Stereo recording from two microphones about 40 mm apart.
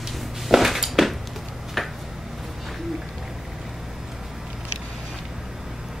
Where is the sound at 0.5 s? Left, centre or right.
Centre.